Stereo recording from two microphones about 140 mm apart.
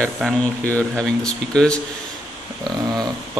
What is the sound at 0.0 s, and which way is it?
Speech, 10° left (ahead or behind).